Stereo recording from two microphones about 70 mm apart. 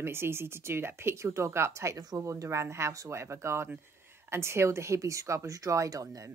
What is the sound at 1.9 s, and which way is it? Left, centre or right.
Speech, right.